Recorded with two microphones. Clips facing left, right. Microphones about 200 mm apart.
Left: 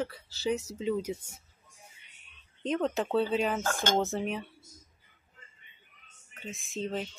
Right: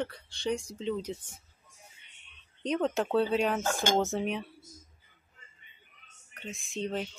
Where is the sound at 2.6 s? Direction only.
Centre (ahead or behind).